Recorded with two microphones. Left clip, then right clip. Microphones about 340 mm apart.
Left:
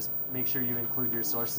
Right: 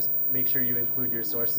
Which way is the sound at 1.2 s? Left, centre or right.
Centre.